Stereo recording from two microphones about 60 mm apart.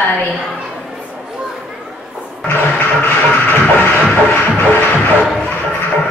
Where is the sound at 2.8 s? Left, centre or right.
Left.